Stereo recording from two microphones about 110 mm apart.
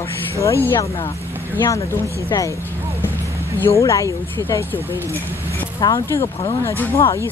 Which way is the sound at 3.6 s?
25° left (ahead or behind).